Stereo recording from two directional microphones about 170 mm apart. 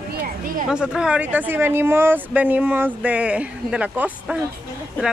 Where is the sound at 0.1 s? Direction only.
60° right (ahead or behind).